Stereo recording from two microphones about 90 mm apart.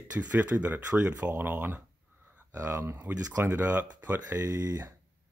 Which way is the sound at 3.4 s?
20° right (ahead or behind).